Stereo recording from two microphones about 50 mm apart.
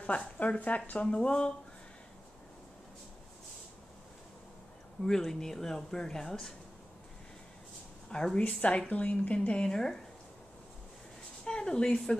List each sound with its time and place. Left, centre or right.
0.0 s speech: left
5.3 s speech: centre
8.1 s a woman's voice: centre
8.4 s speech: left
11.4 s a woman's voice: centre